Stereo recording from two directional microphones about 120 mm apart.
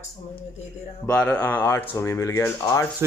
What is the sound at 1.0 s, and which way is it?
Speech, 10° left (ahead or behind).